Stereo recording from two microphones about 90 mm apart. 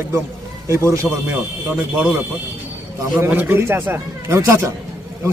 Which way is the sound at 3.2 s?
25° right (ahead or behind).